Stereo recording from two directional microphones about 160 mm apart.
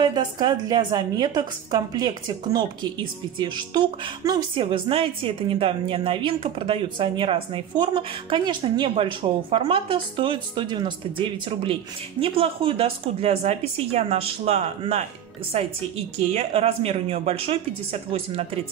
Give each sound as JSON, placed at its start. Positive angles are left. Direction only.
{"t": 0.0, "sound": "a woman's voice", "side_deg": -25}